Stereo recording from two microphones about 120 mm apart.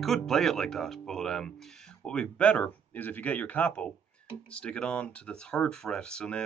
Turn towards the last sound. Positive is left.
turn(degrees=5)  # may be behind; listen again after turning